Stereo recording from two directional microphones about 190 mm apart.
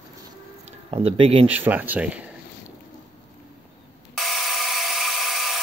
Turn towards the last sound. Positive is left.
turn(degrees=0)  # may be behind; listen again after turning